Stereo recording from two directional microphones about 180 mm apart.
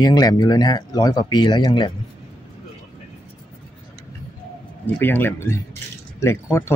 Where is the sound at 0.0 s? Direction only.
20° left (ahead or behind).